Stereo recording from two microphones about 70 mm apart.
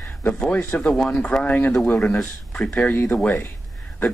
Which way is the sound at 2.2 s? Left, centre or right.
Centre.